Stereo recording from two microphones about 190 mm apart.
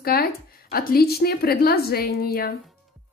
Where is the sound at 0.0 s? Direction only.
50° left (ahead or behind).